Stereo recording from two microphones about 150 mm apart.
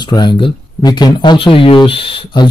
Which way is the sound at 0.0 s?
30° left (ahead or behind).